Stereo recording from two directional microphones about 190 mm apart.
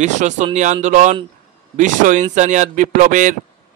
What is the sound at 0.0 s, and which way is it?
A man's voice, 40° right (ahead or behind).